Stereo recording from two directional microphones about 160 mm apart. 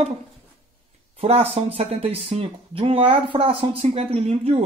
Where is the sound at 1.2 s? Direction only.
40° right (ahead or behind).